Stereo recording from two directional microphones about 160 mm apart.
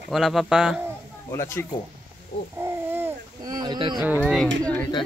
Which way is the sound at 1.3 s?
15° left (ahead or behind).